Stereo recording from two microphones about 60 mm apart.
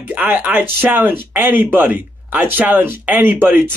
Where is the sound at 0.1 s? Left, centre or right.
Right.